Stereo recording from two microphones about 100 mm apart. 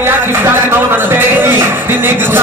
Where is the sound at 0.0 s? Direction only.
20° right (ahead or behind).